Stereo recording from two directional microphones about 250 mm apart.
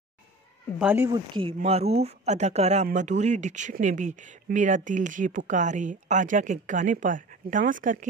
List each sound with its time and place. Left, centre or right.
0.7 s speech: centre; by 8.1 s right